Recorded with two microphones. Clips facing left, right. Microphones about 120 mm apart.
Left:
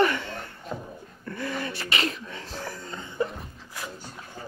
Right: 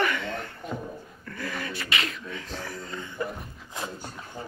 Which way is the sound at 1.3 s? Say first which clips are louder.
Left 3 dB; 25° left (ahead or behind).